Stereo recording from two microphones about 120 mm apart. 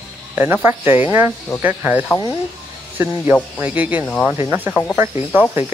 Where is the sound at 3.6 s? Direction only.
15° right (ahead or behind).